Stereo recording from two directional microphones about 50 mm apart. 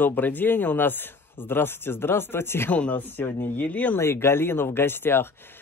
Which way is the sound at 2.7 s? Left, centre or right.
Left.